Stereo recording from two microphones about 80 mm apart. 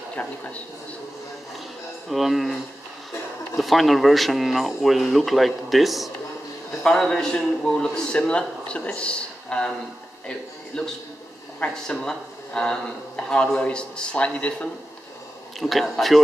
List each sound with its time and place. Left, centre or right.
0.1 s speech: centre
2.0 s speech: centre
6.8 s speech: centre
10.7 s speech: centre
15.6 s speech: centre